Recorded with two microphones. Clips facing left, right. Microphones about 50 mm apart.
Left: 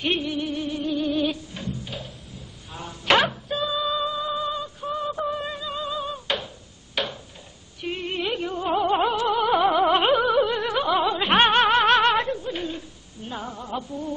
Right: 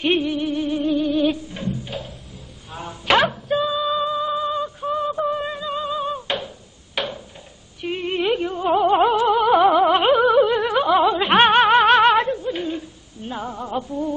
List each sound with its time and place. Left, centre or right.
0.0 s music: centre
1.0 s music: centre
1.3 s music: centre
3.1 s music: centre
3.5 s music: centre
7.0 s a sound: centre
7.8 s music: centre
13.3 s a sound: centre